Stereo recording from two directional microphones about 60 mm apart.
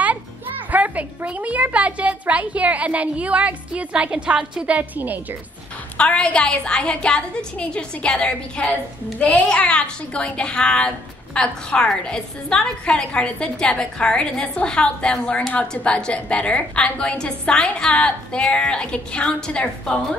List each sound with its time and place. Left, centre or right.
0.7 s speech: right
4.7 s speech: right
5.9 s a woman's voice: centre